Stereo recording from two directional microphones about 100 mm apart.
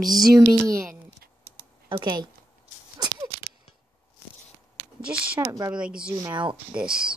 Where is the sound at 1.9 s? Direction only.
50° right (ahead or behind).